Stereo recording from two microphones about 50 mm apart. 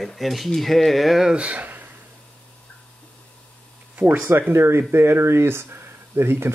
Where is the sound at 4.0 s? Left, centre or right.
Right.